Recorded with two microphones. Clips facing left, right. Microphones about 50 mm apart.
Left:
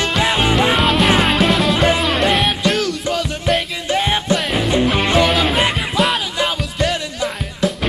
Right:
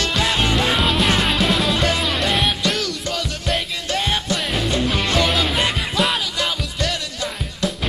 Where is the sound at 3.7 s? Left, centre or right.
Centre.